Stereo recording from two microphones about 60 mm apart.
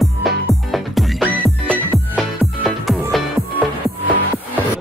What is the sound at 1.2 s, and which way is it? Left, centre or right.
Music, left.